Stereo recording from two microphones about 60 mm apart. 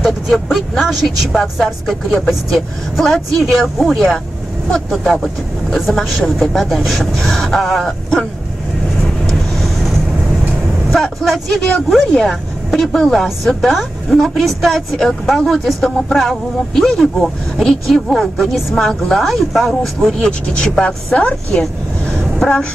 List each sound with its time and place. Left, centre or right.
0.0 s speech: centre
9.2 s vehicle: centre
10.9 s speech: centre
17.9 s speech: centre
20.2 s speech: centre